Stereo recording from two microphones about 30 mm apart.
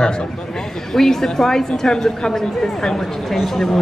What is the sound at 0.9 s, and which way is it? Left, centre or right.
A man's voice, centre.